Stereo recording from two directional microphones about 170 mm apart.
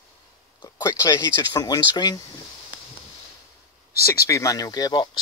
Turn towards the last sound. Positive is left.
turn(degrees=25)  # may be behind; listen again after turning